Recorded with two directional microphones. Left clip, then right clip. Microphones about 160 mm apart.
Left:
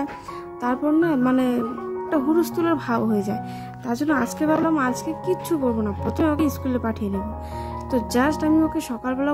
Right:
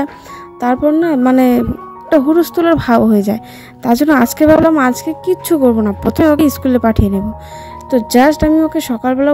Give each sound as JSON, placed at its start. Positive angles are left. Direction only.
{"t": 0.6, "sound": "speech", "side_deg": -35}